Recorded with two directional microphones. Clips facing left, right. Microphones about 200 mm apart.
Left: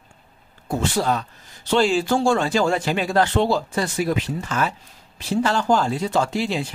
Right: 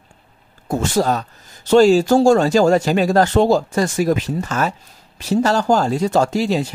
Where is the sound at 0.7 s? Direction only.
45° right (ahead or behind).